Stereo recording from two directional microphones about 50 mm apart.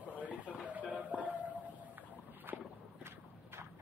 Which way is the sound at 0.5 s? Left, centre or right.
Right.